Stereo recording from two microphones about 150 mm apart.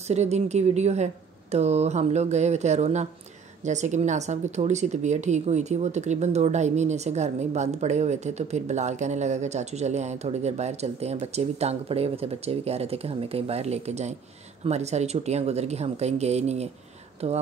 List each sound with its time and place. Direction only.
0.1 s speech: 45° right (ahead or behind)